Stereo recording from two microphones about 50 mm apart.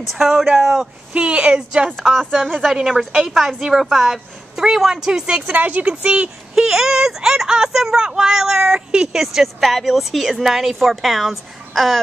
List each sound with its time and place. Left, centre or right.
0.1 s a woman's voice: centre
1.1 s speech: right
2.0 s a woman's voice: centre
5.5 s speech: right
6.5 s a woman's voice: centre